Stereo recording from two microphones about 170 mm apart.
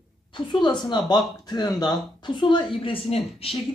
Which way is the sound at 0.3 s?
25° left (ahead or behind).